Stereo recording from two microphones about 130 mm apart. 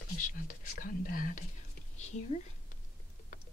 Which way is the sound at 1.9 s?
60° left (ahead or behind).